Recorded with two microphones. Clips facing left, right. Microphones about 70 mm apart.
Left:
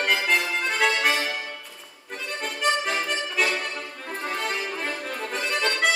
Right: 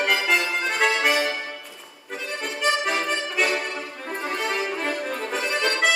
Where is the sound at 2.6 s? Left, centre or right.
Centre.